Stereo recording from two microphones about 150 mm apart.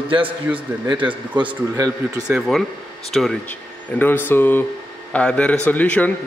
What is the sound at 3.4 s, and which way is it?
A man's voice, 10° left (ahead or behind).